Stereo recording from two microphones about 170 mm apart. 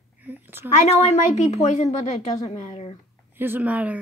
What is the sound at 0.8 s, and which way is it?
Speech, 40° left (ahead or behind).